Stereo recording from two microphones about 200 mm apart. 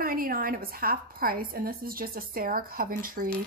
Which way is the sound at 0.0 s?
45° right (ahead or behind).